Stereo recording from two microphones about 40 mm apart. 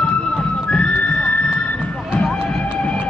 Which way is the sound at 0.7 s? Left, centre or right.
Left.